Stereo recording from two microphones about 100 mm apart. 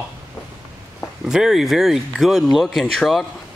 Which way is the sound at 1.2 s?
5° right (ahead or behind).